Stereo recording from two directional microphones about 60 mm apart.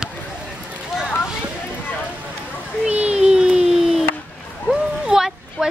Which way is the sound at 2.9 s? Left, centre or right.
Right.